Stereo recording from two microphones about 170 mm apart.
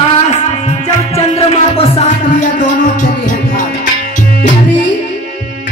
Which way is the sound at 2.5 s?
50° left (ahead or behind).